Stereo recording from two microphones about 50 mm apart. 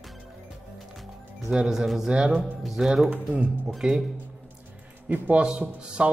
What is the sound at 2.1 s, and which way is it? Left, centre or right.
Speech, centre.